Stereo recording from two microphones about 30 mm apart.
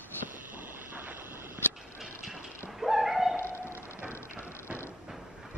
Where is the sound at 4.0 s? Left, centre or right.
Right.